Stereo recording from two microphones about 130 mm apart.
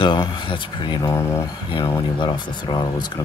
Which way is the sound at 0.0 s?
35° left (ahead or behind).